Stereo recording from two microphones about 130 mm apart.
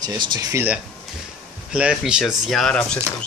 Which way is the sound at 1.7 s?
5° right (ahead or behind).